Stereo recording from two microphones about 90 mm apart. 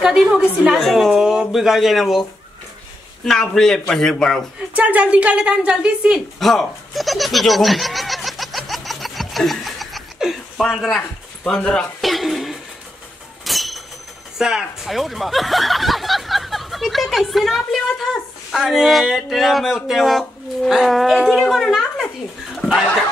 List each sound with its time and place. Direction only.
0.0 s a woman's voice: 5° right (ahead or behind)
3.3 s a woman's voice: 5° left (ahead or behind)
4.7 s a woman's voice: 15° right (ahead or behind)
6.4 s laughter: centre (ahead or behind)
10.7 s a woman's voice: centre (ahead or behind)
12.0 s a sound: centre (ahead or behind)
14.4 s speech: 5° right (ahead or behind)
22.6 s a sound: 10° left (ahead or behind)